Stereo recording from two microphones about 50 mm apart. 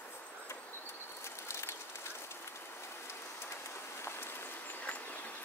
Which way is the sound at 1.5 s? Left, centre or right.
Left.